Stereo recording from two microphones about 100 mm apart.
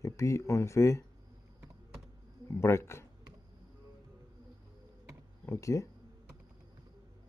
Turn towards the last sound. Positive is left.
turn(degrees=30)  # may be behind; listen again after turning